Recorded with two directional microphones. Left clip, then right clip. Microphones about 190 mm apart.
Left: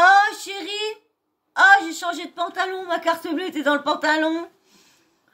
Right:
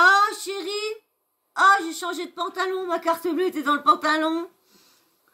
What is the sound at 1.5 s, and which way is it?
A woman's voice, 10° left (ahead or behind).